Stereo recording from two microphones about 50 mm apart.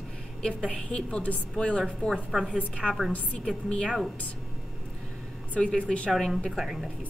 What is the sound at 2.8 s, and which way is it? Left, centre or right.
Speech, right.